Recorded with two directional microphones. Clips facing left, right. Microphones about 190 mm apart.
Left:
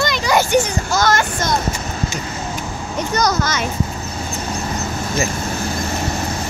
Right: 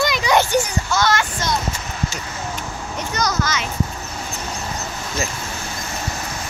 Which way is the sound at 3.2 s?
60° left (ahead or behind).